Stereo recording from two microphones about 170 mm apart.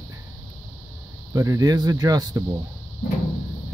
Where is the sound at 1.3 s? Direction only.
20° right (ahead or behind).